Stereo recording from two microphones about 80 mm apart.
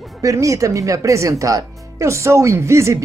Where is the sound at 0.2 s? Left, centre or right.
Right.